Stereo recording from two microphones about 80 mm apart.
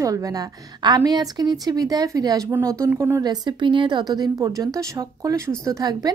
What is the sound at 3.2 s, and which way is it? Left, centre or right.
Speech, right.